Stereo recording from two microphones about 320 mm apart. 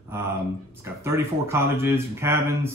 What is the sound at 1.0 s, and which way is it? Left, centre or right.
Speech, centre.